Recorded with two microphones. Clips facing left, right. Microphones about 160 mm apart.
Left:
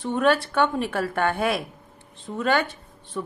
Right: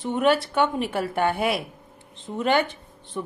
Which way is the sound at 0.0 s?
15° right (ahead or behind).